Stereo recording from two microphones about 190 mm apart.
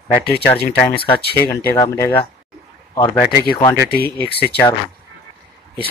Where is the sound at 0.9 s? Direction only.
30° left (ahead or behind).